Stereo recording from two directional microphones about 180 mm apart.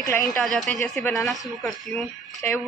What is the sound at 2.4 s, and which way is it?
Speech, 10° left (ahead or behind).